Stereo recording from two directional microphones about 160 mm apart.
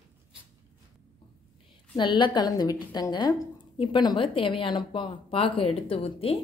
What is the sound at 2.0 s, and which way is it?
A woman's voice, 30° left (ahead or behind).